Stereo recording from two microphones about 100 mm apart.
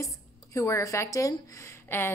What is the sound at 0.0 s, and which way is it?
Speech, 30° left (ahead or behind).